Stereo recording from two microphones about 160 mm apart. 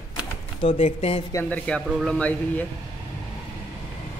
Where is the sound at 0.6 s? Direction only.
40° left (ahead or behind).